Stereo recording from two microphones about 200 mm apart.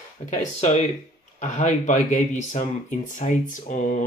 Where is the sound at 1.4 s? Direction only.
35° left (ahead or behind).